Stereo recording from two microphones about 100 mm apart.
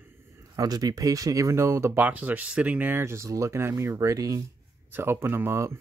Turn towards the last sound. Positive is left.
turn(degrees=-25)  # may be behind; listen again after turning